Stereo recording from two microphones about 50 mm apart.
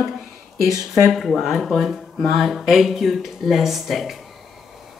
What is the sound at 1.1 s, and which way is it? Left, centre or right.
A woman's voice, centre.